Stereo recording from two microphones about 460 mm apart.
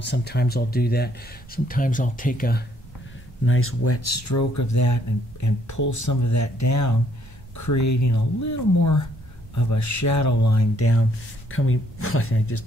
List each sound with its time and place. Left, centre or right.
0.0 s speech: left